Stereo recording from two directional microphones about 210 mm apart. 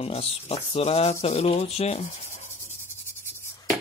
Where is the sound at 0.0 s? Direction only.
30° left (ahead or behind).